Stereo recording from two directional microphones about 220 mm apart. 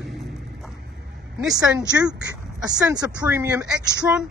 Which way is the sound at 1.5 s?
15° right (ahead or behind).